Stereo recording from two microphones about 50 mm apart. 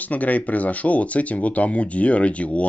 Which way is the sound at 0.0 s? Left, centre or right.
Left.